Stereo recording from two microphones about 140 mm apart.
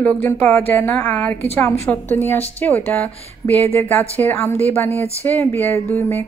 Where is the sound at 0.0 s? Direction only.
15° left (ahead or behind).